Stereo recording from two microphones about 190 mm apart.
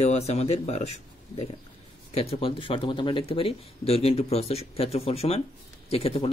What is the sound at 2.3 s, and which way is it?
Speech, 30° left (ahead or behind).